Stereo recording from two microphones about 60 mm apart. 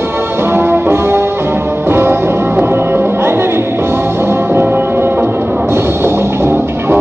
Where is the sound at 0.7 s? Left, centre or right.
Right.